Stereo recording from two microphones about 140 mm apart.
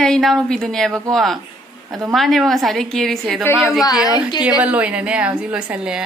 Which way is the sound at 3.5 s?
15° left (ahead or behind).